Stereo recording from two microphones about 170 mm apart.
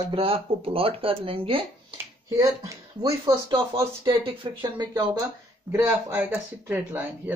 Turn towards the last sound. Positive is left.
turn(degrees=-10)  # may be behind; listen again after turning